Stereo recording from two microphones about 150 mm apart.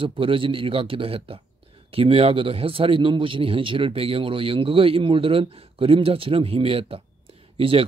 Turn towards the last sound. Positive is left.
turn(degrees=-40)  # may be behind; listen again after turning